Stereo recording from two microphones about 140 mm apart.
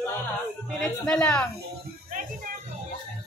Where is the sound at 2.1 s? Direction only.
80° right.